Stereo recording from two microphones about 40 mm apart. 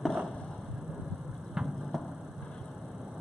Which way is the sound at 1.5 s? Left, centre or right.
Centre.